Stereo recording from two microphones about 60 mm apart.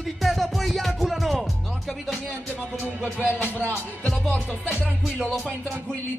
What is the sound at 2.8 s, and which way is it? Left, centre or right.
Music, right.